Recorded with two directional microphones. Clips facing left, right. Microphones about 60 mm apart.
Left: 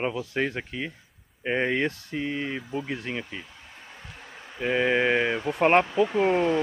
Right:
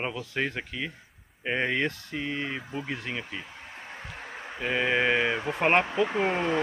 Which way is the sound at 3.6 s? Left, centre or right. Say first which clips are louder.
Right 4 dB; right.